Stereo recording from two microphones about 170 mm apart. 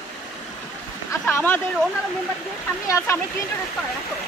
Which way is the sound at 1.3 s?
10° left (ahead or behind).